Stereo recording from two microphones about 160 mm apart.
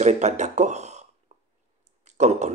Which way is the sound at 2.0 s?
45° right (ahead or behind).